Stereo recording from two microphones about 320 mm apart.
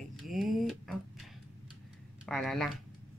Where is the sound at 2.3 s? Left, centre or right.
Centre.